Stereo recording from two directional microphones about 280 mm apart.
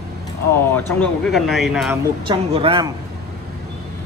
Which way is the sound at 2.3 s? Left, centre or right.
Centre.